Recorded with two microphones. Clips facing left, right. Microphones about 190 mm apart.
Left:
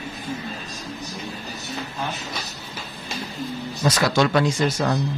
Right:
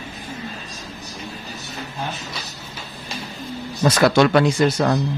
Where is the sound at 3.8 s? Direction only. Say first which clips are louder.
Right 5 dB; 60° right (ahead or behind).